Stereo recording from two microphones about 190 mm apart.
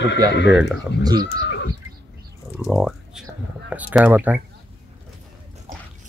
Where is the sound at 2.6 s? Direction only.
5° right (ahead or behind).